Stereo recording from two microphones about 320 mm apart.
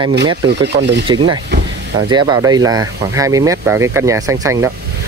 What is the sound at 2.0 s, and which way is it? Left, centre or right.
Speech, centre.